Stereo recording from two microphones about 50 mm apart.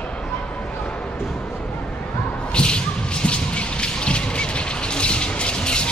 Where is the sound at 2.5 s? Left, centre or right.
Centre.